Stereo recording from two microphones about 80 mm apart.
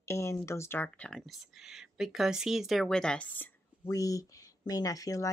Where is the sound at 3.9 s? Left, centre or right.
Left.